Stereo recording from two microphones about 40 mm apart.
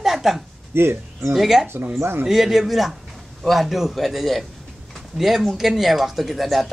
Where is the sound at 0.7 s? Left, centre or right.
Right.